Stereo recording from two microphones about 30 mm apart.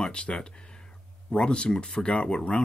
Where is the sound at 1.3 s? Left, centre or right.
Left.